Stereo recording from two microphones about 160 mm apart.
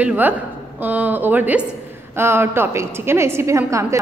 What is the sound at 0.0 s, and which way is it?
A woman's voice, 10° right (ahead or behind).